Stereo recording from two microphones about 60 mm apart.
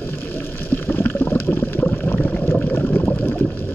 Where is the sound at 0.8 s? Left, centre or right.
Left.